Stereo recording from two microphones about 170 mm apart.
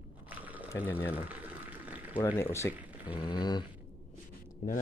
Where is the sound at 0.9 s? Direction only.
10° left (ahead or behind).